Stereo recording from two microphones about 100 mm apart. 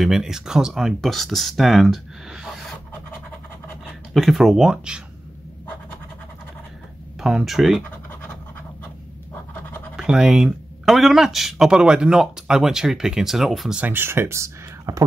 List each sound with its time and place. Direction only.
0.0 s speech: 5° right (ahead or behind)
3.8 s speech: centre (ahead or behind)
7.2 s speech: 5° right (ahead or behind)
9.9 s speech: 5° right (ahead or behind)
13.7 s speech: 20° right (ahead or behind)